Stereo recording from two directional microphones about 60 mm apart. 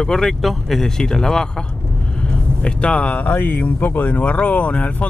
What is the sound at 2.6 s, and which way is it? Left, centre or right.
Speech, left.